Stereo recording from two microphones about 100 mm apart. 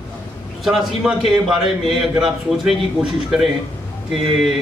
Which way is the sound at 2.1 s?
Centre (ahead or behind).